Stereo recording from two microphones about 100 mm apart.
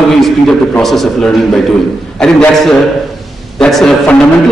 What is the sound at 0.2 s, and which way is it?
A man's voice, 5° left (ahead or behind).